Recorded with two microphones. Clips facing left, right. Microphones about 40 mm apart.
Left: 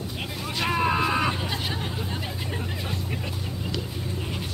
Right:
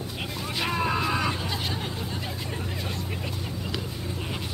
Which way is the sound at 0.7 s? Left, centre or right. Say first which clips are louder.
Left 3 dB; centre.